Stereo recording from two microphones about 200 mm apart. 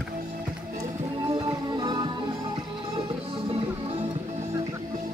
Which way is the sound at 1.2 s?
25° right (ahead or behind).